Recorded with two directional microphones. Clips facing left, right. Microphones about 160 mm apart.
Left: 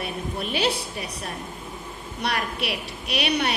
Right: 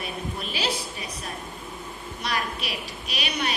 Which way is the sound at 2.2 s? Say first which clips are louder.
Left 3 dB; 65° left (ahead or behind).